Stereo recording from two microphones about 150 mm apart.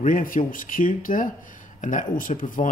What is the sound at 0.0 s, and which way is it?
Speech, 65° left (ahead or behind).